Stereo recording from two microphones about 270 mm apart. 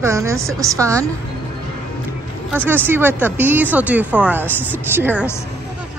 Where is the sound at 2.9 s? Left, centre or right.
Centre.